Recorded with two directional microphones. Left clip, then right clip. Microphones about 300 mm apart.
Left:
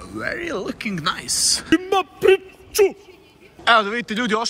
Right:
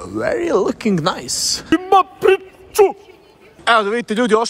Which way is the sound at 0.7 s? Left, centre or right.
Right.